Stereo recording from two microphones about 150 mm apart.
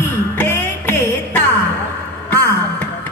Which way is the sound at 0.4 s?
15° left (ahead or behind).